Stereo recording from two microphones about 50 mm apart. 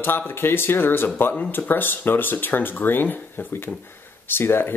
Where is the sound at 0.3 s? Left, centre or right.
Left.